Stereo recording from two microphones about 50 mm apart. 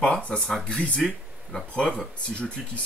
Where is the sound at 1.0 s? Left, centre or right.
Centre.